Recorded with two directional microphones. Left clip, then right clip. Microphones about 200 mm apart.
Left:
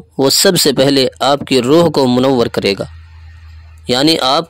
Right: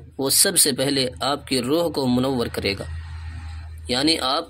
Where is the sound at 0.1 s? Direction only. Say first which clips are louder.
Left 11 dB; 50° left (ahead or behind).